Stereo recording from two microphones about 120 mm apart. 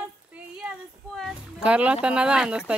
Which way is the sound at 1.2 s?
5° right (ahead or behind).